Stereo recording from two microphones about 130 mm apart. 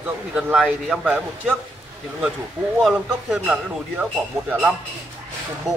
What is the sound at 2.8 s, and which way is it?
Speech, 5° right (ahead or behind).